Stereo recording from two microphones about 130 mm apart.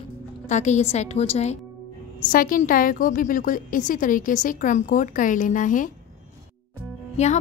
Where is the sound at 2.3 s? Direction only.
90° left.